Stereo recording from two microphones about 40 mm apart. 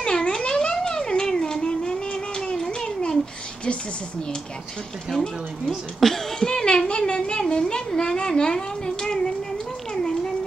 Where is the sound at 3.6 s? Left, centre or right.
Left.